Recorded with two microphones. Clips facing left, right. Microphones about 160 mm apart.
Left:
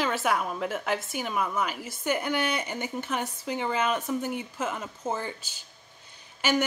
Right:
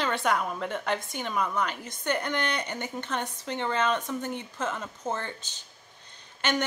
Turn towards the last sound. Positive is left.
turn(degrees=5)  # may be behind; listen again after turning